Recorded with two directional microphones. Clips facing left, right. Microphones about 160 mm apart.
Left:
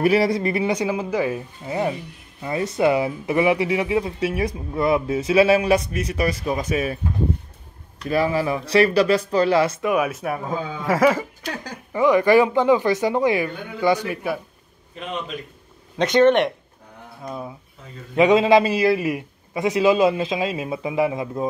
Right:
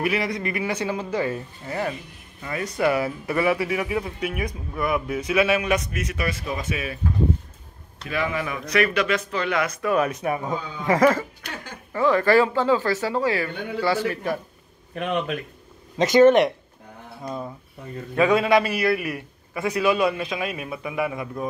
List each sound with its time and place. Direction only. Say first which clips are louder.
0.0 s speech: left 7 dB; 35° left (ahead or behind)
0.7 s speech: left 4 dB; 15° left (ahead or behind); by 7.0 s 40° left (ahead or behind)
8.0 s speech: left 6 dB; 35° left (ahead or behind)
9.8 s speech: left 1 dB; 10° left (ahead or behind)
11.4 s speech: left 6 dB; 40° left (ahead or behind)
11.9 s speech: left 3 dB; 15° left (ahead or behind)
15.0 s speech: right 5 dB; 65° right (ahead or behind)
16.0 s speech: right 1 dB; 5° right (ahead or behind)
17.2 s speech: even; 5° left (ahead or behind)
18.1 s speech: left 4 dB; 20° left (ahead or behind)